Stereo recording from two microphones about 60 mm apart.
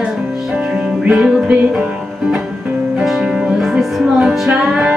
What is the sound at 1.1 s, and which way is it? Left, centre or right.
Music, centre.